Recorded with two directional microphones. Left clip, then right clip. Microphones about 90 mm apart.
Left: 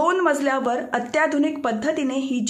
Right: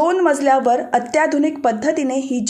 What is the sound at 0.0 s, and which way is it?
A woman's voice, 20° right (ahead or behind).